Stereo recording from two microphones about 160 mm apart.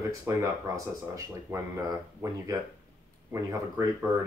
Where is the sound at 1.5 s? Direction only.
20° right (ahead or behind).